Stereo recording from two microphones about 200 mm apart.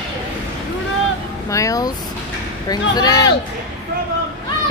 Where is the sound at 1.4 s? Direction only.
15° left (ahead or behind).